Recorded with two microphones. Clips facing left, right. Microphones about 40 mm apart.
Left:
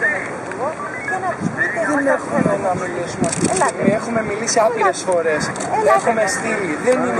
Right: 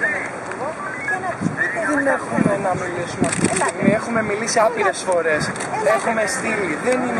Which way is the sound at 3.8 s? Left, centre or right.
Centre.